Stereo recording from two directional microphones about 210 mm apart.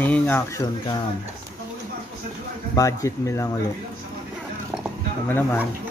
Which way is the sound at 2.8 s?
15° left (ahead or behind).